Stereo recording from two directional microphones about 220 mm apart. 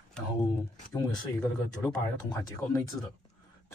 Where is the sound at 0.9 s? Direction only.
15° left (ahead or behind).